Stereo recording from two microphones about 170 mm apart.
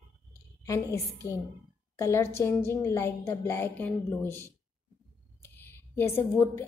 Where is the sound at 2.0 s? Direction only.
15° left (ahead or behind).